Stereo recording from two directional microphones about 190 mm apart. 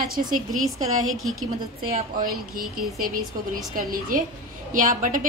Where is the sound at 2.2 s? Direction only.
50° right (ahead or behind).